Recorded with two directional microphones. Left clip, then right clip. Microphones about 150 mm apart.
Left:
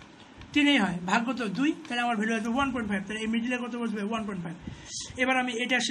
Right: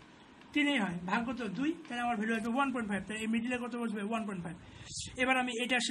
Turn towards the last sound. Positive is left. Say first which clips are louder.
# left 5 dB
turn(degrees=-20)  # may be behind; listen again after turning